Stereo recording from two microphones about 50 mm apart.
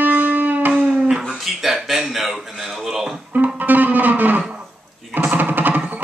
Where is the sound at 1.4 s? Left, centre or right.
Centre.